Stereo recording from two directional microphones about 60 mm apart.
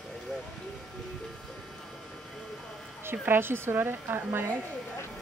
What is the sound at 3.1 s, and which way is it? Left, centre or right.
A woman's voice, right.